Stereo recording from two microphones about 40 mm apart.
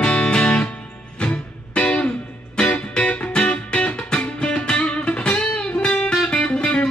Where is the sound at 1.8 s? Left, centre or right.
Left.